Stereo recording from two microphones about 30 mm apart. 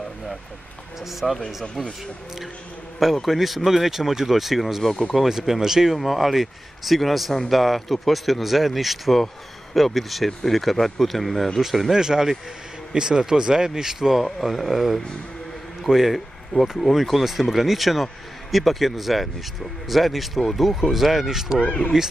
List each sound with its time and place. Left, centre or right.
1.0 s speech: centre
3.2 s speech: centre
5.9 s speech: centre
11.9 s speech: centre
15.9 s speech: right
16.8 s speech: centre
21.6 s speech: left